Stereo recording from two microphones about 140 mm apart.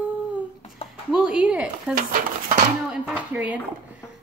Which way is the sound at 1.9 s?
90° right.